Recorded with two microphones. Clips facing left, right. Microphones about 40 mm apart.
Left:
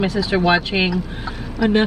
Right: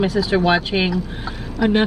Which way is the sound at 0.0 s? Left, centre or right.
Centre.